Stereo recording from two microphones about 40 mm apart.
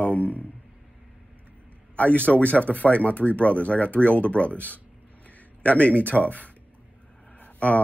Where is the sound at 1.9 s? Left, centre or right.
Left.